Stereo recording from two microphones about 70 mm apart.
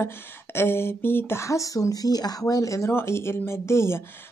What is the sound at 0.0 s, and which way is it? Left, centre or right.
Speech, left.